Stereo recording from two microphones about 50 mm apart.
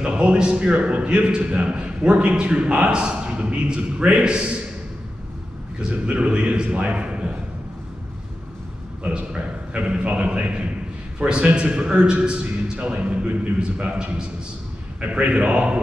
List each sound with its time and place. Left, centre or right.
0.0 s a man's voice: right
5.8 s a man's voice: right
9.0 s a man's voice: right
15.0 s a man's voice: right